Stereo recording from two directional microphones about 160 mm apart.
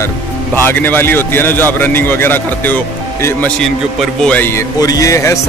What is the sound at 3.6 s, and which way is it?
Speech, centre (ahead or behind).